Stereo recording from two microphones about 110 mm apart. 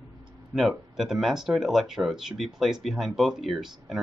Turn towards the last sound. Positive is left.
turn(degrees=0)  # may be behind; listen again after turning